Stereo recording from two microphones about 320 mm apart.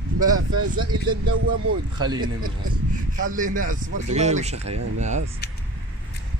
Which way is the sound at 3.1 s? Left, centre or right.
Right.